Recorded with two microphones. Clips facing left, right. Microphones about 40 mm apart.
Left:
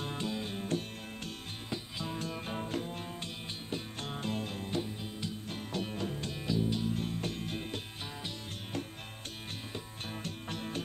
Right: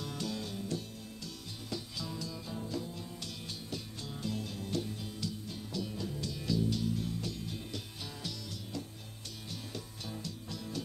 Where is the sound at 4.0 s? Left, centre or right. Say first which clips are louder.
Left 2 dB; left.